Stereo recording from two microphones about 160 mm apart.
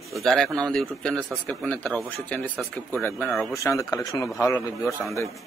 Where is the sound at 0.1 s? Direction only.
Centre (ahead or behind); by 4.9 s 20° left (ahead or behind).